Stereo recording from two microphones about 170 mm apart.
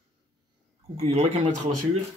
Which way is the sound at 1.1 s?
40° right (ahead or behind).